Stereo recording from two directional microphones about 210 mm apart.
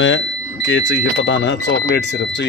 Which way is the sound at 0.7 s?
60° left (ahead or behind).